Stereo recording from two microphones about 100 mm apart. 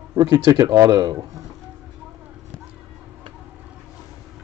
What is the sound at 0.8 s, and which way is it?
Speech, 45° right (ahead or behind).